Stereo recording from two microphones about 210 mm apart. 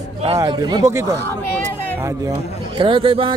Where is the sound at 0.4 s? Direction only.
20° right (ahead or behind).